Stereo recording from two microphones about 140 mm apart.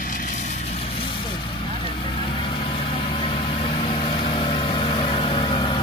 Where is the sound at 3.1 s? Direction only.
40° left (ahead or behind).